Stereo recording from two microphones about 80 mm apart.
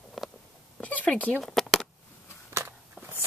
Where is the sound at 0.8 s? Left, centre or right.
Centre.